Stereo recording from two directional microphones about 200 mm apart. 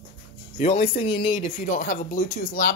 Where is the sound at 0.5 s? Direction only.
40° left (ahead or behind).